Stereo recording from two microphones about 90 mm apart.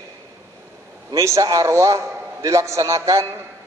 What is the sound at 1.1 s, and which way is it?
A man's voice, 35° right (ahead or behind).